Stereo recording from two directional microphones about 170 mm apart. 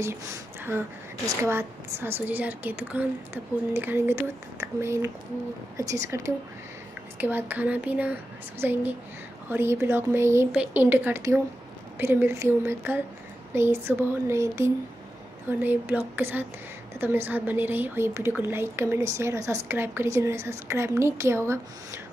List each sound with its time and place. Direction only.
0.0 s a woman's voice: 15° right (ahead or behind)